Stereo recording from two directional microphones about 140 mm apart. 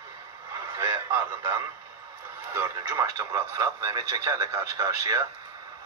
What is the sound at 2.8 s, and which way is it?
Speech, 30° right (ahead or behind).